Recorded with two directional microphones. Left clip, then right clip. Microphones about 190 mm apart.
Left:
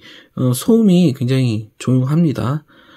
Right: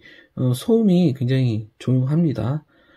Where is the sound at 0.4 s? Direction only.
25° left (ahead or behind).